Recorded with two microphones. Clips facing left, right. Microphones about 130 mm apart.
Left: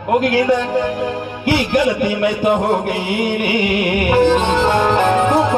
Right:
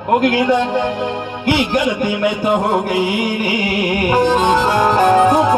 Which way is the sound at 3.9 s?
40° right (ahead or behind).